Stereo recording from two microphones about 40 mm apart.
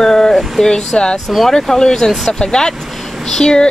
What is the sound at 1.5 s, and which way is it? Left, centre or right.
Speech, centre.